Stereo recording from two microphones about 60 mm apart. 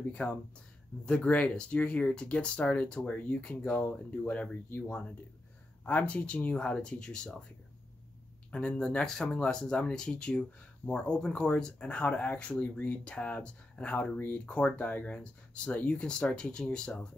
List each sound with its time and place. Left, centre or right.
0.1 s speech: left
8.5 s speech: centre